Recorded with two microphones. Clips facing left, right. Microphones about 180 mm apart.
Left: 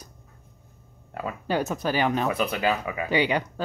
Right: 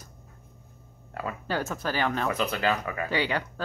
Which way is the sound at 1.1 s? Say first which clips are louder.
Left 4 dB; 10° left (ahead or behind).